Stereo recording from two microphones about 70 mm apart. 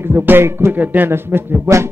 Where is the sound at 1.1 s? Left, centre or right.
Right.